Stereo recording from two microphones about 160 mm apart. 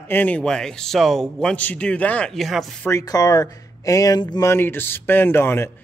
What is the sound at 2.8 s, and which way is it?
Speech, 20° left (ahead or behind).